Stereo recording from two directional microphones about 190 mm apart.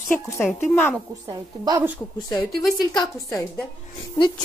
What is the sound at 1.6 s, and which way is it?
Speech, 20° right (ahead or behind).